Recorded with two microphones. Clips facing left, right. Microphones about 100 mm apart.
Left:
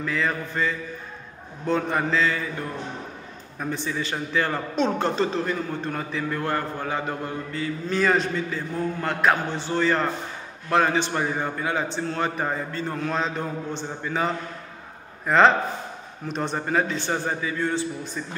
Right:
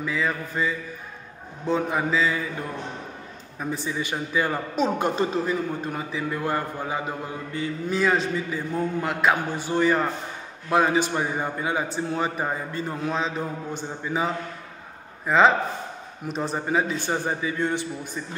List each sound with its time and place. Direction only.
0.0 s mantra: 5° right (ahead or behind)
3.5 s mantra: 5° right (ahead or behind)
3.9 s a man's voice: 15° right (ahead or behind)
7.9 s mantra: centre (ahead or behind)
8.5 s a man's voice: 15° right (ahead or behind)
13.1 s mantra: 5° right (ahead or behind)
14.1 s a man's voice: 15° right (ahead or behind)
15.2 s mantra: 5° right (ahead or behind)
16.6 s a man's voice: 10° right (ahead or behind)